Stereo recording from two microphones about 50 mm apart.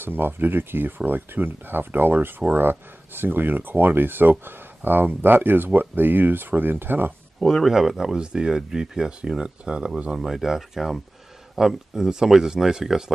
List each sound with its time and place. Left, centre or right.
0.0 s speech: right
7.3 s speech: centre
10.2 s speech: centre